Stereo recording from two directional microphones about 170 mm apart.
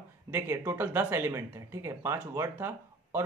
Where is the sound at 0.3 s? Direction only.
15° right (ahead or behind).